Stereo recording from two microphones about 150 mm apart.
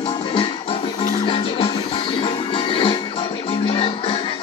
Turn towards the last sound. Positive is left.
turn(degrees=35)  # may be behind; listen again after turning